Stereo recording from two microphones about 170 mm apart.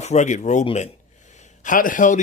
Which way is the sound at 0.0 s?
45° left (ahead or behind).